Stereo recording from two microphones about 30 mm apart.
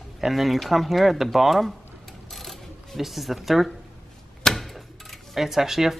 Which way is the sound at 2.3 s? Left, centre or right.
Centre.